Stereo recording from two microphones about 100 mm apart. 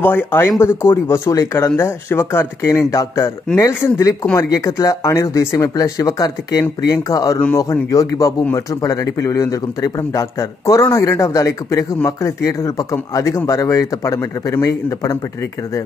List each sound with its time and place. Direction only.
0.0 s speech: 20° left (ahead or behind)